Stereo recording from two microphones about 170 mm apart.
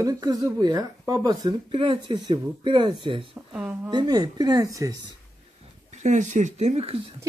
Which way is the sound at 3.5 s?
5° right (ahead or behind).